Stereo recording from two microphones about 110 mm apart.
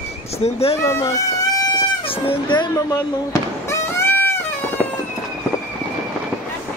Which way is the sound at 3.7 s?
20° left (ahead or behind).